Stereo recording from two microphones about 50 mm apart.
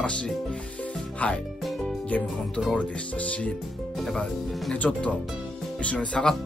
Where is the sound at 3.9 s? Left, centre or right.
Centre.